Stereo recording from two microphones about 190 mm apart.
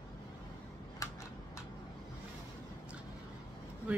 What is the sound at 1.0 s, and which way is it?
Tick-tock, 15° left (ahead or behind).